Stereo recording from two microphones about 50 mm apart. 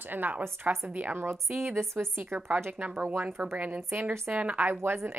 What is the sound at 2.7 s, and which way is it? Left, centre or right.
Speech, right.